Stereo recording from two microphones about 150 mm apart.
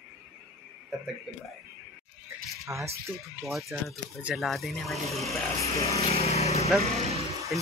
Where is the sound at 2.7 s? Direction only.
15° right (ahead or behind).